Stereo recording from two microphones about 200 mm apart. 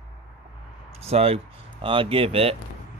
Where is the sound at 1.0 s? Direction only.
30° right (ahead or behind).